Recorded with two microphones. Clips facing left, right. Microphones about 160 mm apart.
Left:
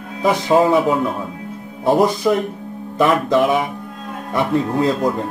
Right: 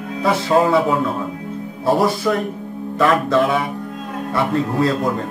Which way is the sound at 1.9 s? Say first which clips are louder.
Left 2 dB; 20° left (ahead or behind).